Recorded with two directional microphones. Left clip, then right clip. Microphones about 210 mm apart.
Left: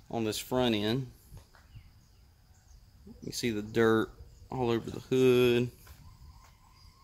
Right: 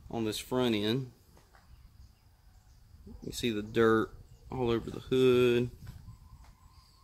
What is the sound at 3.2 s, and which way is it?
Speech, 10° left (ahead or behind).